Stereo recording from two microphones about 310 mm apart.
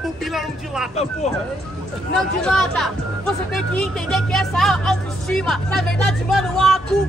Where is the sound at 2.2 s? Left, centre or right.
Centre.